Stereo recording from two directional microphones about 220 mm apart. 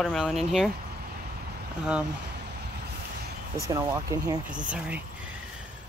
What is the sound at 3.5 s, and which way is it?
Speech, 15° right (ahead or behind).